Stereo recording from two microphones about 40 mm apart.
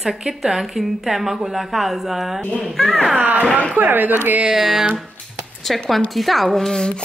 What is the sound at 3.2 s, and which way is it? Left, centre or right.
Speech, right.